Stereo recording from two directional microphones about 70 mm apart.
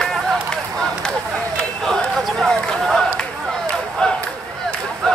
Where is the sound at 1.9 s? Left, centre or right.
Centre.